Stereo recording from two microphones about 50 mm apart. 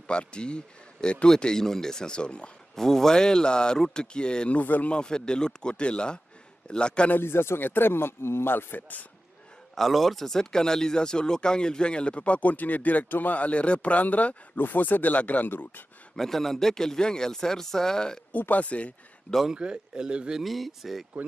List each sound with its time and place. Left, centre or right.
0.0 s a man's voice: left
2.7 s a man's voice: centre
4.6 s speech: left
4.9 s a man's voice: centre
7.2 s speech: left
9.8 s speech: centre; by 15.8 s left
16.2 s a man's voice: centre
18.3 s speech: left
19.5 s speech: centre
20.3 s speech: centre